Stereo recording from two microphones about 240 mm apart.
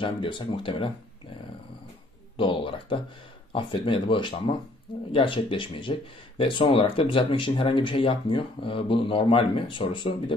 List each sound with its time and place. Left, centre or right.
0.0 s speech: left
2.3 s speech: left